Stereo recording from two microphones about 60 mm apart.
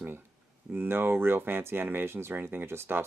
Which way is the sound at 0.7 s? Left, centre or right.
Right.